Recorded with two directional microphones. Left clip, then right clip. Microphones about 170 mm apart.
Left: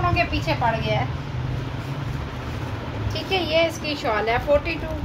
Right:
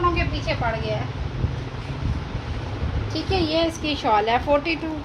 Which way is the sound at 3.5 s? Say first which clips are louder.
Left 2 dB; 35° right (ahead or behind).